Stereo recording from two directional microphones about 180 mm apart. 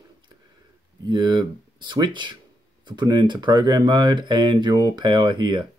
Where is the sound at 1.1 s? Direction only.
25° right (ahead or behind).